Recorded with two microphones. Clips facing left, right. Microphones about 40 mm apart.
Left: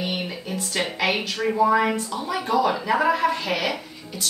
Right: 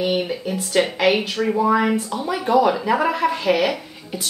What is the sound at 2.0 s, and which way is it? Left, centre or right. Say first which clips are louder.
A woman's voice: right 3 dB; centre.